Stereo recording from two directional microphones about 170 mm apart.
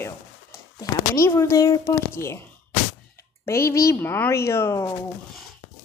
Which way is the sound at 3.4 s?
15° left (ahead or behind).